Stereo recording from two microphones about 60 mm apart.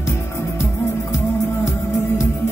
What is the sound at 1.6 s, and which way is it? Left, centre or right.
Music, left.